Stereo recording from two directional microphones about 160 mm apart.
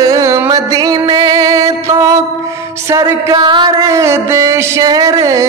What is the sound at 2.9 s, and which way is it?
Music, 20° right (ahead or behind).